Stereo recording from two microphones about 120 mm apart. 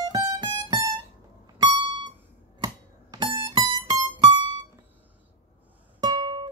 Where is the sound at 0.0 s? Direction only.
35° right (ahead or behind).